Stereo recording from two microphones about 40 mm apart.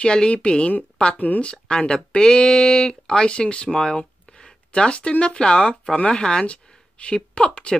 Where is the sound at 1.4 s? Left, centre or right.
Left.